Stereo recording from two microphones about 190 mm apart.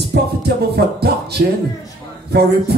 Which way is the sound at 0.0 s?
60° right (ahead or behind).